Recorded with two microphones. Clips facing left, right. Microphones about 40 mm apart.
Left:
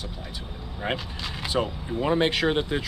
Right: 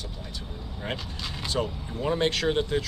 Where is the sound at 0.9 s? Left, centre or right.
Centre.